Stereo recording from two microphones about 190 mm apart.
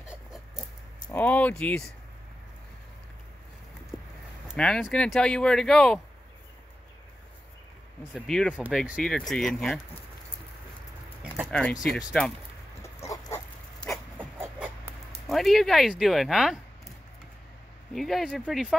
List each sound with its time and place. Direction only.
1.0 s speech: 10° left (ahead or behind)
4.5 s speech: centre (ahead or behind)
8.0 s speech: centre (ahead or behind)
11.3 s speech: centre (ahead or behind)
12.8 s pig: 15° left (ahead or behind)
14.1 s chicken: 10° right (ahead or behind)
15.2 s speech: centre (ahead or behind)
17.9 s speech: centre (ahead or behind)